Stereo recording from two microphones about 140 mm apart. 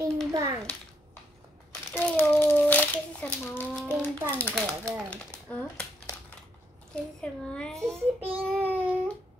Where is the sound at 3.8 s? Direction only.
10° right (ahead or behind).